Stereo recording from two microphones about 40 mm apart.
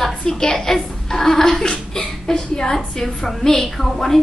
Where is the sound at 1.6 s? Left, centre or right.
Centre.